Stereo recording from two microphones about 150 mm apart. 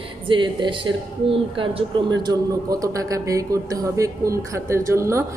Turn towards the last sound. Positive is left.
turn(degrees=-20)  # may be behind; listen again after turning